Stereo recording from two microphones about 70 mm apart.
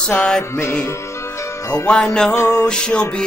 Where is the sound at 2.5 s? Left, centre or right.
Centre.